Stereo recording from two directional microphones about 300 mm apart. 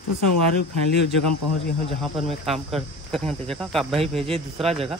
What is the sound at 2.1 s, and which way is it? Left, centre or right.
Speech, centre.